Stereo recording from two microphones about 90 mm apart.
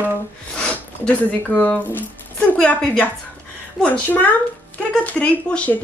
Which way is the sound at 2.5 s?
10° left (ahead or behind).